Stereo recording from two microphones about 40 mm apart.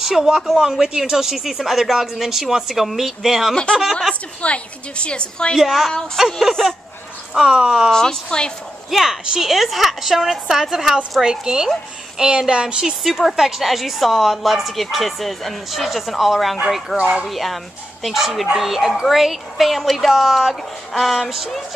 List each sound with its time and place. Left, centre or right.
0.0 s speech: centre
4.1 s a woman's voice: left
5.6 s speech: centre
7.3 s speech: centre
7.9 s a woman's voice: centre
8.9 s speech: centre
13.0 s a woman's voice: centre